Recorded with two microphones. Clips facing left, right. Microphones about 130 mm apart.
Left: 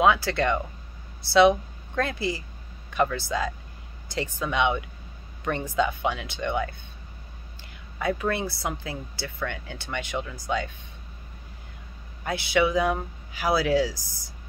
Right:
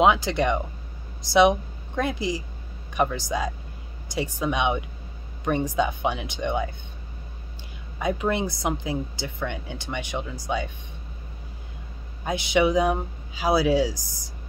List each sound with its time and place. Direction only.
0.0 s a woman's voice: 20° right (ahead or behind)
8.0 s speech: 20° right (ahead or behind)
12.3 s speech: 20° right (ahead or behind)